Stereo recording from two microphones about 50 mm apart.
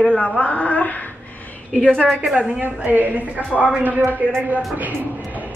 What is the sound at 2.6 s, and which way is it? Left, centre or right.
Speech, right.